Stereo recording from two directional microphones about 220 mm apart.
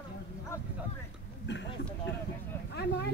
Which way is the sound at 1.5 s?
50° left (ahead or behind).